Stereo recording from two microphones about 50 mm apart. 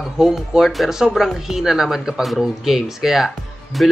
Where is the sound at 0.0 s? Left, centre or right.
Centre.